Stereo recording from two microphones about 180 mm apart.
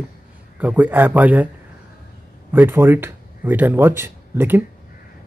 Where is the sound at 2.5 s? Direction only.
10° right (ahead or behind).